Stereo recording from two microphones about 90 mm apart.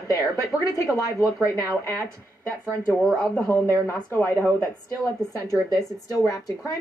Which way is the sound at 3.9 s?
30° left (ahead or behind).